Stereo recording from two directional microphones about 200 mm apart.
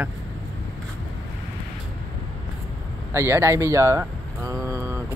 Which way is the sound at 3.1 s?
15° right (ahead or behind).